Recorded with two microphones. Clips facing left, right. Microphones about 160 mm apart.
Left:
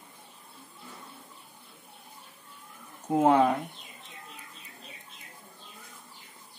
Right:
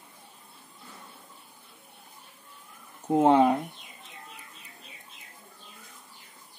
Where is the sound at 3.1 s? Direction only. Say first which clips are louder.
Right 2 dB; 25° right (ahead or behind).